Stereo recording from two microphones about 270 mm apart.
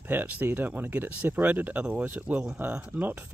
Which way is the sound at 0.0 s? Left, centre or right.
Centre.